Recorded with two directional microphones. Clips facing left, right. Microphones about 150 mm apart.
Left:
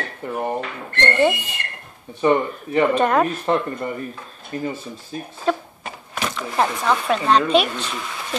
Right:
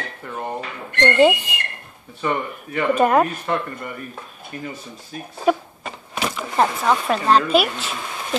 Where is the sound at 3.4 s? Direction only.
30° left (ahead or behind).